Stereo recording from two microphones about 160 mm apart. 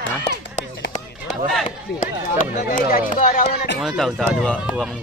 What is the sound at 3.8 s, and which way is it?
Speech, centre (ahead or behind).